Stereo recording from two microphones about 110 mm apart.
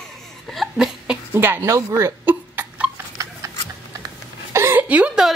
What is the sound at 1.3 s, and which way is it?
Speech, 20° right (ahead or behind).